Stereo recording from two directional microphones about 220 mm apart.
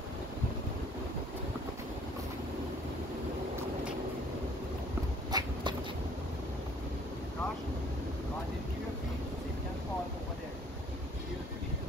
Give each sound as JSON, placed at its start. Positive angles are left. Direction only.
{"t": 5.3, "sound": "vehicle", "side_deg": -20}